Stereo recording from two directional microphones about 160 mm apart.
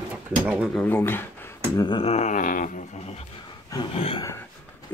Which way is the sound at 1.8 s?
30° left (ahead or behind).